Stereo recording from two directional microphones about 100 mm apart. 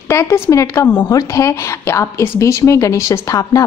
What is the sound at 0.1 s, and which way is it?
A woman's voice, 25° left (ahead or behind).